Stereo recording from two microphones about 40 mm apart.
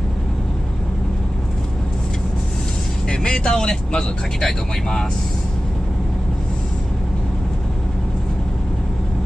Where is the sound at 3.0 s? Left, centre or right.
Left.